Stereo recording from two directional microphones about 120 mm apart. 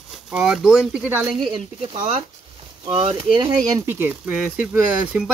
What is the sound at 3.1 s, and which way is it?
Speech, 40° right (ahead or behind).